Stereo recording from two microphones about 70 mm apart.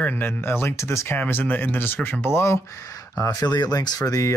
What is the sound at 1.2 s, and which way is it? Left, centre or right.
Speech, left.